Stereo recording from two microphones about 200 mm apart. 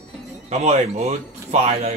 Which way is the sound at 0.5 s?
35° right (ahead or behind).